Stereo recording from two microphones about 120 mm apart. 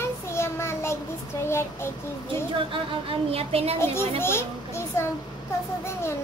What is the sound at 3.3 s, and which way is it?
Speech, 55° right (ahead or behind).